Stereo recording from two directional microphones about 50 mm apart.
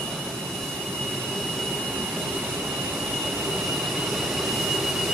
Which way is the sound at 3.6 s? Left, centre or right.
Centre.